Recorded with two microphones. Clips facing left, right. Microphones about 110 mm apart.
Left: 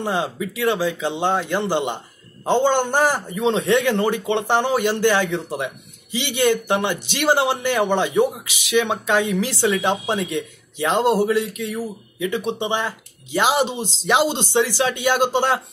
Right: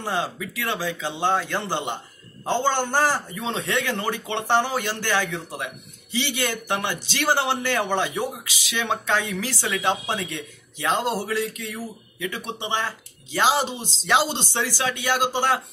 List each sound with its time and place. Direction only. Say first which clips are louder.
0.0 s a man's voice: left 4 dB; 20° left (ahead or behind)